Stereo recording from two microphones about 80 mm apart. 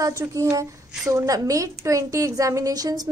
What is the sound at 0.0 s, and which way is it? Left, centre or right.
A woman's voice, right.